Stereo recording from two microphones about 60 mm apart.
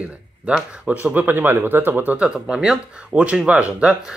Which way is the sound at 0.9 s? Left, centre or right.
Right.